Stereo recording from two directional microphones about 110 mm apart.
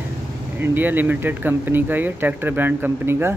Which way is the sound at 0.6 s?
20° right (ahead or behind).